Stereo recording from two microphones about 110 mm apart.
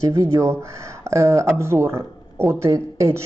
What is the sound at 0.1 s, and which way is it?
Speech, 25° right (ahead or behind).